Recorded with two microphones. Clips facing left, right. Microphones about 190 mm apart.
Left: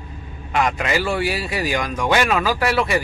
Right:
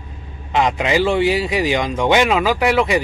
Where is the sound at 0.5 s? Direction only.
20° right (ahead or behind).